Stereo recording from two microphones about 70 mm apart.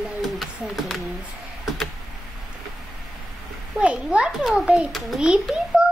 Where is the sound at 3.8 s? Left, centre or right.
Centre.